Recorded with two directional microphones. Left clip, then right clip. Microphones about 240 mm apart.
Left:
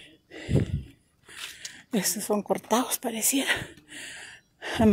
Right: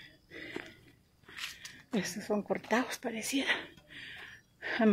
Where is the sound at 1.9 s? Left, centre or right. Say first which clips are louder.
Left 7 dB; left.